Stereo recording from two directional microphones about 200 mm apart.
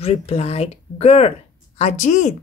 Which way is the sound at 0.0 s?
30° left (ahead or behind).